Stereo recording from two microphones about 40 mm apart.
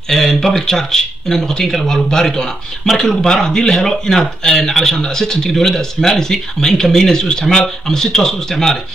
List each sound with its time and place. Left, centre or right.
0.1 s speech: centre